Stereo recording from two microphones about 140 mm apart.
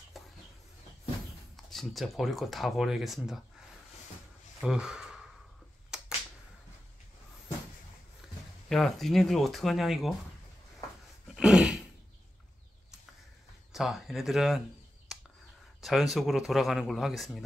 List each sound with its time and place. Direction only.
0.2 s a sound: centre (ahead or behind)
1.7 s speech: centre (ahead or behind)
4.6 s speech: 5° right (ahead or behind)
5.9 s finger snapping: 5° right (ahead or behind)
8.6 s speech: centre (ahead or behind)
11.3 s dog: 5° right (ahead or behind)
13.7 s speech: centre (ahead or behind)
15.1 s a sound: centre (ahead or behind)
15.8 s speech: centre (ahead or behind)